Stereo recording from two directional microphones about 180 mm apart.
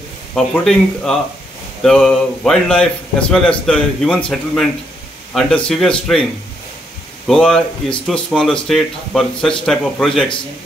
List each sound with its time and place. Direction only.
0.3 s a man's voice: centre (ahead or behind)
7.2 s a man's voice: 5° left (ahead or behind)